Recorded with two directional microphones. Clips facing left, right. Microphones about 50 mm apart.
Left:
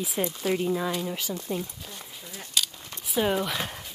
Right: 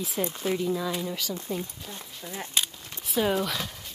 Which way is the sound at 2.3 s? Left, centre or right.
Right.